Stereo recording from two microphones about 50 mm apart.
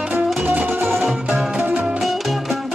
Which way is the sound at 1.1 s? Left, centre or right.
Centre.